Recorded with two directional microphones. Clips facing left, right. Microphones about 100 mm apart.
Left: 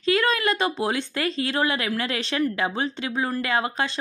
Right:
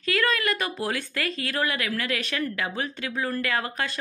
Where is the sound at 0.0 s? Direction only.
25° left (ahead or behind).